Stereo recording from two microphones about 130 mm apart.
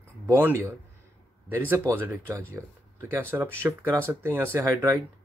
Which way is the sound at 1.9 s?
20° right (ahead or behind).